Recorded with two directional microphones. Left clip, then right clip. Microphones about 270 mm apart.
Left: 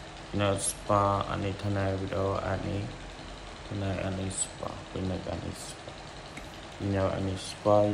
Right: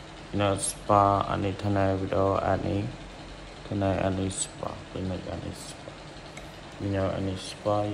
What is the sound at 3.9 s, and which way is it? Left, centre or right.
Speech, centre.